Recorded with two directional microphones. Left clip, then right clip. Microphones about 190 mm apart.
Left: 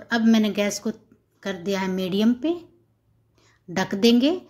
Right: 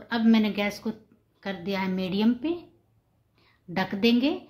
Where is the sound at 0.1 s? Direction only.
20° left (ahead or behind).